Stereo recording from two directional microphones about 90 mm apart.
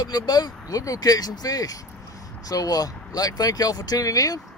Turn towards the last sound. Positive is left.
turn(degrees=40)  # may be behind; listen again after turning